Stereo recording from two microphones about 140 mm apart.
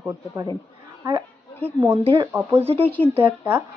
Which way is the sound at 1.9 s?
45° right (ahead or behind).